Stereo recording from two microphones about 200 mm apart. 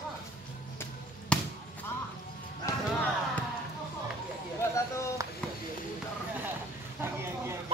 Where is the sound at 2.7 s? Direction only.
15° left (ahead or behind).